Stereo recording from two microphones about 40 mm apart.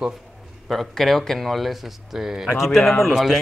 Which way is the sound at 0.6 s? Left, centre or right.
Centre.